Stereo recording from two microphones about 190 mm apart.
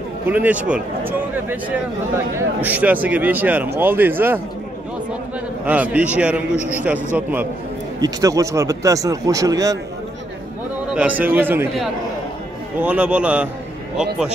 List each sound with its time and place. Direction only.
0.3 s speech: 10° right (ahead or behind)
5.7 s speech: 10° right (ahead or behind)
10.9 s speech: 5° right (ahead or behind)
12.8 s a man's voice: 5° right (ahead or behind)